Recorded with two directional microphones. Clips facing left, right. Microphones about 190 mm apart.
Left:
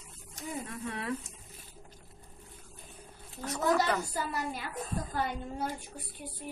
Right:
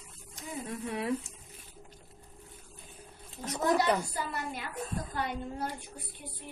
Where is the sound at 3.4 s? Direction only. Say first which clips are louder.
Right 1 dB; 20° right (ahead or behind).